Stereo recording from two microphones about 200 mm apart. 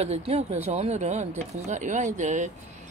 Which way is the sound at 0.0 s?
30° right (ahead or behind).